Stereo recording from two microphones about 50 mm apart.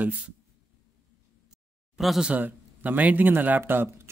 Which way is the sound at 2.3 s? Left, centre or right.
Right.